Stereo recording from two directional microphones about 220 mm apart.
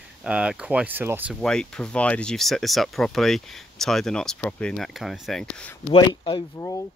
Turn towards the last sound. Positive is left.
turn(degrees=15)  # may be behind; listen again after turning